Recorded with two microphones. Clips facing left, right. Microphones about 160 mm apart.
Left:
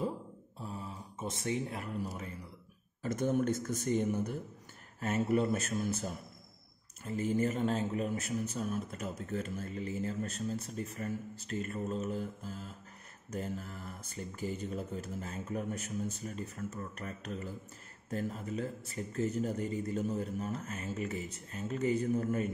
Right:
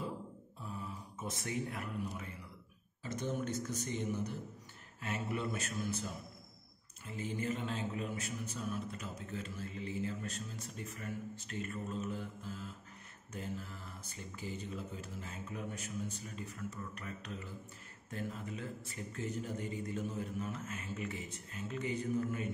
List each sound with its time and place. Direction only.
0.6 s a sound: 30° left (ahead or behind)
2.0 s a man's voice: 40° left (ahead or behind)
7.1 s a man's voice: 45° left (ahead or behind)